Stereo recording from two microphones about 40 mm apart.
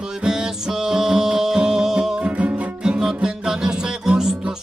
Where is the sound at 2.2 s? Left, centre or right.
Right.